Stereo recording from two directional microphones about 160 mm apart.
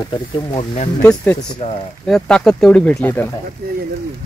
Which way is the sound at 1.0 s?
10° left (ahead or behind).